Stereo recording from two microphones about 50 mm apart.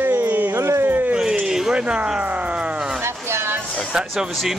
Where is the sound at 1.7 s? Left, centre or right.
Right.